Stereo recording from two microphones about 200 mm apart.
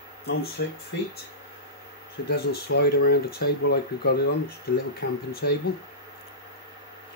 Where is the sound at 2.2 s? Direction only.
55° left (ahead or behind).